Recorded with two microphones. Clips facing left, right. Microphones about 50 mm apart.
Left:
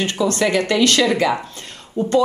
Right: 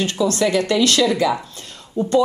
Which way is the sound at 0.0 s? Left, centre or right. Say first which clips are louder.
Even; left.